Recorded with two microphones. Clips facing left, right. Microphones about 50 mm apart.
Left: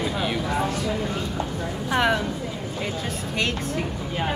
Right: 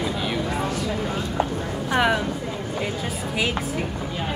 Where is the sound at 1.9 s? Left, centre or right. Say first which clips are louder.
Right 1 dB; centre.